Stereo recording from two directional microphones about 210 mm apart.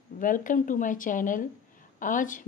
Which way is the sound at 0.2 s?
40° left (ahead or behind).